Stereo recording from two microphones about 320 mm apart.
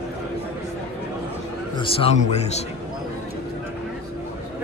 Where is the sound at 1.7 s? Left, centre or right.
Centre.